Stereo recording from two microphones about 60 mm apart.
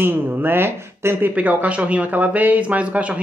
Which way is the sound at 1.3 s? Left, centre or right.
Right.